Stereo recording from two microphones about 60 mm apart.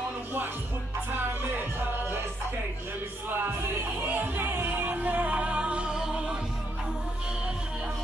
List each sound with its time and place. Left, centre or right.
1.1 s music: right
3.3 s music: right; by 6.3 s centre